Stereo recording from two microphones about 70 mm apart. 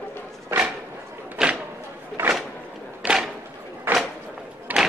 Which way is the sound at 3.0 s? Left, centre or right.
Right.